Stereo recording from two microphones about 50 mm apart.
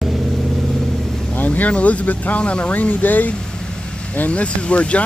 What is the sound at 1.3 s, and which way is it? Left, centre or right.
Speech, left.